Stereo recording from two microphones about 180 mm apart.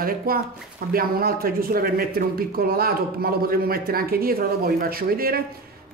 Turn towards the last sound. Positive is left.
turn(degrees=-55)  # may be behind; listen again after turning